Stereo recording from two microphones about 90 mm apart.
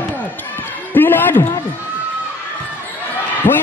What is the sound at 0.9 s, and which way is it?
Speech, 20° left (ahead or behind).